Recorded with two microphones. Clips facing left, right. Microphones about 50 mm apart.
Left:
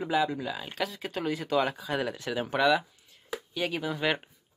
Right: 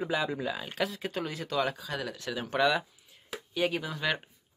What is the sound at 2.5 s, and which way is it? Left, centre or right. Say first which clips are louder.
Speech: left 2 dB; centre.